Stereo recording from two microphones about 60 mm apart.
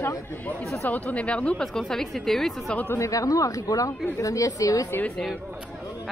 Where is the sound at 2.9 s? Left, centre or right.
Left.